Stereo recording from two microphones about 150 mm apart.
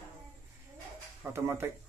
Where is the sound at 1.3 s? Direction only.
15° right (ahead or behind).